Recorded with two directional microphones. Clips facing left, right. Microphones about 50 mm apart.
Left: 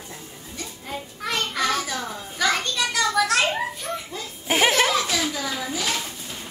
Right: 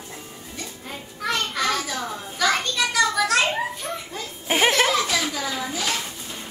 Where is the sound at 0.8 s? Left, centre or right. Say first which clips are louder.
Right 2 dB; centre.